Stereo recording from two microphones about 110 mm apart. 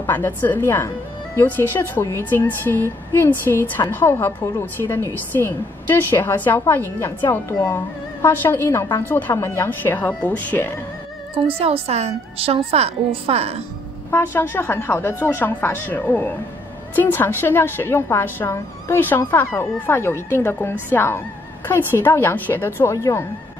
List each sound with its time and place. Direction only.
0.0 s a woman's voice: 20° left (ahead or behind)
11.3 s a woman's voice: 60° right (ahead or behind)
14.1 s a woman's voice: 20° left (ahead or behind)